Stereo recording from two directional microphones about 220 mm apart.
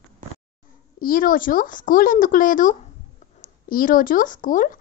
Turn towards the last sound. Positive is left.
turn(degrees=35)  # may be behind; listen again after turning